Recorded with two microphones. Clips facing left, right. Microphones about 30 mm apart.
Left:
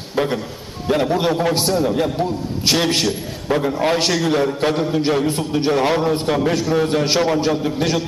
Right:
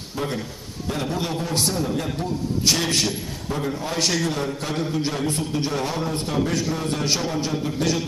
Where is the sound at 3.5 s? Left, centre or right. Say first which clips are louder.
Left 8 dB; left.